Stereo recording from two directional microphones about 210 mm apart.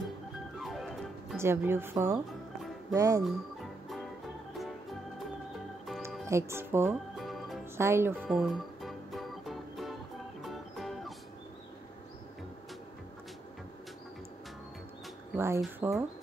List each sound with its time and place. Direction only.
0.6 s music: centre (ahead or behind)
1.4 s a woman's voice: 10° right (ahead or behind)
6.2 s a woman's voice: 15° right (ahead or behind)
7.2 s music: centre (ahead or behind)
7.7 s speech: 10° right (ahead or behind)
8.2 s music: centre (ahead or behind)
10.4 s organ: centre (ahead or behind)
15.3 s a woman's voice: 10° right (ahead or behind)